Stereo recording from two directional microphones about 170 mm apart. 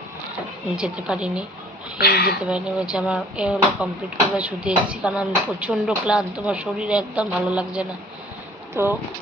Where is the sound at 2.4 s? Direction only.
5° right (ahead or behind).